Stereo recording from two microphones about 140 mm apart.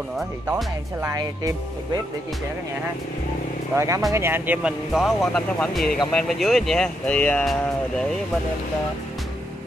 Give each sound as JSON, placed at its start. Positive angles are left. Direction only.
{"t": 1.0, "sound": "speech", "side_deg": -25}
{"t": 3.7, "sound": "speech", "side_deg": -20}
{"t": 4.9, "sound": "speech", "side_deg": 0}